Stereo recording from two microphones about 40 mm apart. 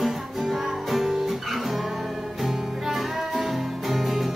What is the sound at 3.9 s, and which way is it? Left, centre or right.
Music, centre.